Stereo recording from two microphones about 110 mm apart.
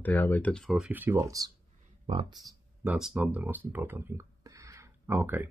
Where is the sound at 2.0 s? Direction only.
50° right (ahead or behind).